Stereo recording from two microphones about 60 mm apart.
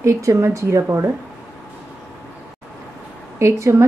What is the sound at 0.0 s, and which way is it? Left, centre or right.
Speech, right.